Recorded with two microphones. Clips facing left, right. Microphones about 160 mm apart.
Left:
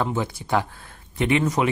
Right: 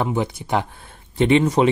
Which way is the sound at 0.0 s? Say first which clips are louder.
Right 3 dB; 20° right (ahead or behind).